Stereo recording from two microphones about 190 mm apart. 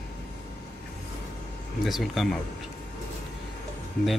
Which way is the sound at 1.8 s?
Centre (ahead or behind).